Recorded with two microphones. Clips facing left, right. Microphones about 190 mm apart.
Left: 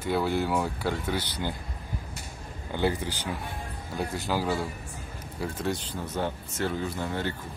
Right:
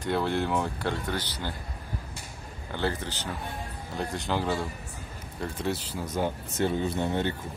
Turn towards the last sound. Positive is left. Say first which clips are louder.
# right 3 dB
turn(degrees=-20)  # may be behind; listen again after turning